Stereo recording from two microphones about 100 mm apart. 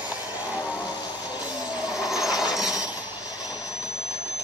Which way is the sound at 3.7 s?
10° right (ahead or behind).